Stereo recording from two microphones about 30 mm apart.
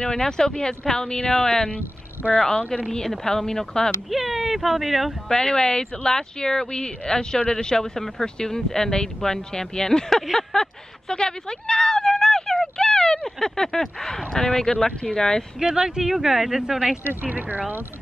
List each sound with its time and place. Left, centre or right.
0.1 s speech: left
2.3 s speech: left
3.4 s speech: left
4.1 s speech: centre
5.3 s speech: left
12.0 s speech: centre
15.6 s speech: right
16.1 s speech: centre
17.2 s speech: right